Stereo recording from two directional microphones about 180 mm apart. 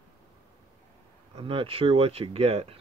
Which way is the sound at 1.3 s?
30° right (ahead or behind).